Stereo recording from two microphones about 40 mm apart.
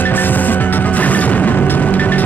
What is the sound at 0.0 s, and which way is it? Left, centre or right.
Music, left.